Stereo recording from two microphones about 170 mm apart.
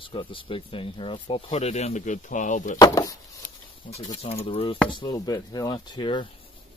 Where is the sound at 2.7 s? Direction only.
20° left (ahead or behind).